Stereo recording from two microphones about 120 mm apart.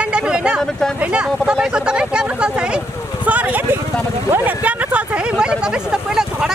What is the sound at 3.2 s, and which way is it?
Vehicle, 15° right (ahead or behind).